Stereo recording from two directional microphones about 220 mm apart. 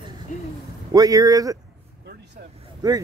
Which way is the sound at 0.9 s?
15° right (ahead or behind).